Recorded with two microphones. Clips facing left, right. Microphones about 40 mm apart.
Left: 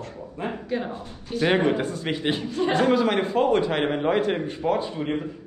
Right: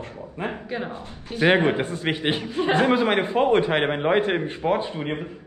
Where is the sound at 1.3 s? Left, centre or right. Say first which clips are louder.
Right 2 dB; right.